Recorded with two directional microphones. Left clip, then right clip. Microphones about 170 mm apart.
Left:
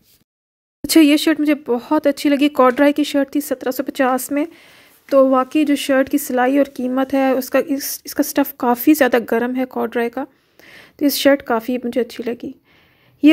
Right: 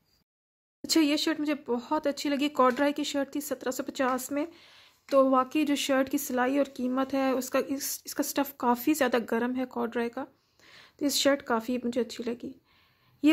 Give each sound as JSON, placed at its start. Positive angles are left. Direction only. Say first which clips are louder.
{"t": 0.8, "sound": "speech", "louder": "left 13 dB", "side_deg": 35}